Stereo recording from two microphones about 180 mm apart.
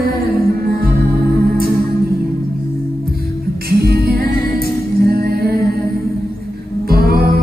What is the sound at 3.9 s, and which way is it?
Music, 60° right (ahead or behind).